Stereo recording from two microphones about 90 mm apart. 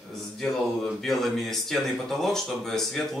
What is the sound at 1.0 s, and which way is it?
Speech, centre (ahead or behind).